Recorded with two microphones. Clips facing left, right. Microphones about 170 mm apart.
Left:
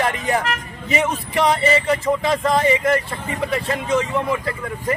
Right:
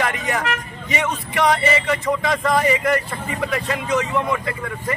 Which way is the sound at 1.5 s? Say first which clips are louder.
Left 2 dB; 30° left (ahead or behind).